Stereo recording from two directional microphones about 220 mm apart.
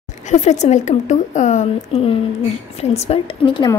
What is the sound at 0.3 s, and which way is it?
A woman's voice, 30° left (ahead or behind).